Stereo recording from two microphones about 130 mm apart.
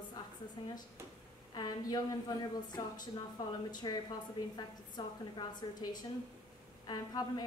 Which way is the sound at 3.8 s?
35° left (ahead or behind).